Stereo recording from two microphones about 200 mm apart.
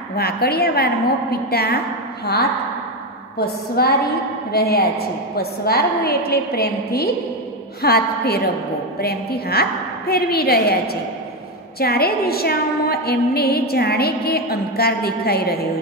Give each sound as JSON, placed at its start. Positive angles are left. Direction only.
{"t": 0.1, "sound": "a woman's voice", "side_deg": 50}
{"t": 3.3, "sound": "a woman's voice", "side_deg": 50}